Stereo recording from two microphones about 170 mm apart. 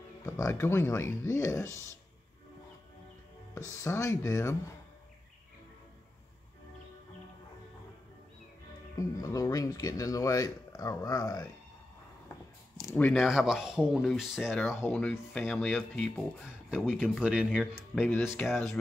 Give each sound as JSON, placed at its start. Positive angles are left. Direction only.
{"t": 0.2, "sound": "speech", "side_deg": 15}
{"t": 3.5, "sound": "speech", "side_deg": 15}
{"t": 8.9, "sound": "speech", "side_deg": 20}
{"t": 12.8, "sound": "speech", "side_deg": 10}
{"t": 13.1, "sound": "speech", "side_deg": 0}
{"t": 14.7, "sound": "speech", "side_deg": 10}
{"t": 18.4, "sound": "speech", "side_deg": 5}